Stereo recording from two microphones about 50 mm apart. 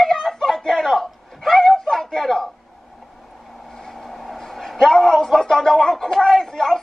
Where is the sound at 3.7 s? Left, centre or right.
Centre.